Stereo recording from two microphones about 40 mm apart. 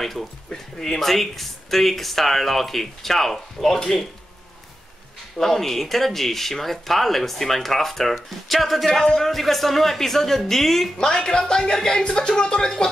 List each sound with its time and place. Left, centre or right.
0.0 s speech: centre
5.4 s speech: centre
11.0 s speech: centre